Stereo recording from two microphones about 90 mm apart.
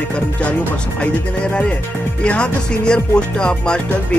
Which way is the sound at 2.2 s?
10° left (ahead or behind).